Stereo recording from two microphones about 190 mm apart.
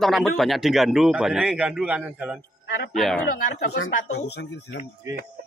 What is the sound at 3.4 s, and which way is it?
Speech, 60° left (ahead or behind).